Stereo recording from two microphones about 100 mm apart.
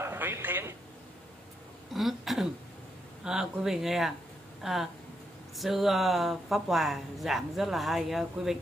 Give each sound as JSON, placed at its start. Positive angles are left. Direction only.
{"t": 0.0, "sound": "a sound", "side_deg": -25}
{"t": 2.0, "sound": "throat clearing", "side_deg": 0}
{"t": 3.3, "sound": "speech", "side_deg": -5}